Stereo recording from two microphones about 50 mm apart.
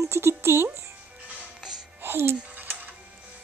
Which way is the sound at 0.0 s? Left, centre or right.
Right.